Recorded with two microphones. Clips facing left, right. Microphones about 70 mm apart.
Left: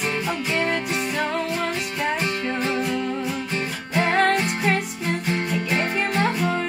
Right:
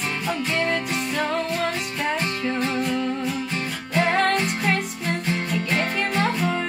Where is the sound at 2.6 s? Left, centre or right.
Centre.